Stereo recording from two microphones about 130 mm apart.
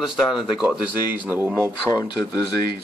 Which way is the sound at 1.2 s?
15° right (ahead or behind).